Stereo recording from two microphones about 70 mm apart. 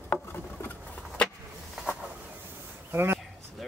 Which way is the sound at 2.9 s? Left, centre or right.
Right.